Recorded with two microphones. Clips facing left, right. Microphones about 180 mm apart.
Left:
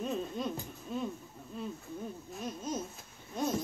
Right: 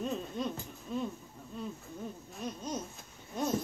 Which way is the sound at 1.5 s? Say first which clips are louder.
Even; centre (ahead or behind).